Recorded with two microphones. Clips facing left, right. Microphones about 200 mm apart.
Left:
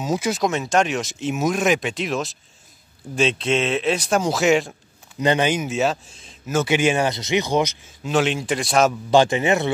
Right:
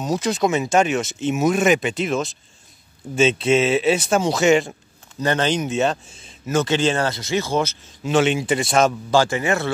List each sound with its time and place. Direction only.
0.0 s speech: 5° left (ahead or behind)
5.2 s speech: 15° left (ahead or behind); by 6.6 s centre (ahead or behind)
6.6 s speech: 10° left (ahead or behind)
8.0 s speech: centre (ahead or behind)
9.1 s a man's voice: 20° left (ahead or behind)